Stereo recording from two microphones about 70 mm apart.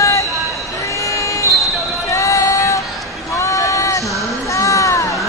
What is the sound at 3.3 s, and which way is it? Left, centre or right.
Run, left.